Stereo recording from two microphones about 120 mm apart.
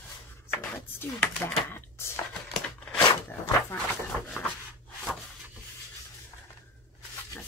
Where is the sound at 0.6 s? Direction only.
15° left (ahead or behind).